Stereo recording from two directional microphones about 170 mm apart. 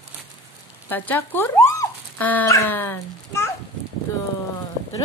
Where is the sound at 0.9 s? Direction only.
10° left (ahead or behind).